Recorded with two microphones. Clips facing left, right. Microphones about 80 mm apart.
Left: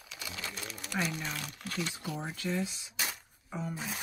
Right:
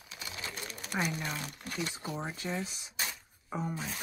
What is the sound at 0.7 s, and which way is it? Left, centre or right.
Crumpling, right.